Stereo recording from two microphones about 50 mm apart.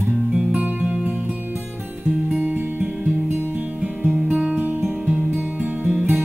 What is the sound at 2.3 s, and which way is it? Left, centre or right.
Music, right.